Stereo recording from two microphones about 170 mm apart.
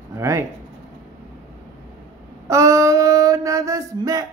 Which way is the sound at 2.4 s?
20° right (ahead or behind).